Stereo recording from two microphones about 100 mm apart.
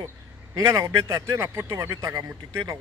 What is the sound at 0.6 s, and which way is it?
Speech, 30° right (ahead or behind).